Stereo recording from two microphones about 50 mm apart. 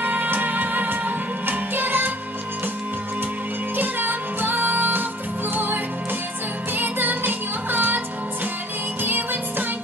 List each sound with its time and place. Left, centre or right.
0.0 s music: right
3.7 s music: right
9.0 s music: right